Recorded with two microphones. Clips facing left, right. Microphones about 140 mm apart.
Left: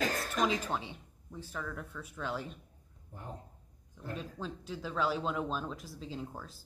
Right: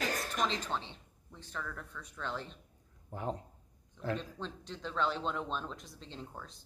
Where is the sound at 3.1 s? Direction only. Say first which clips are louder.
Right 8 dB; 90° right.